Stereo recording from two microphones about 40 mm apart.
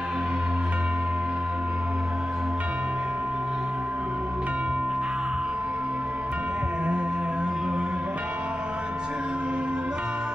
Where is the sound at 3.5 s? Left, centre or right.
Right.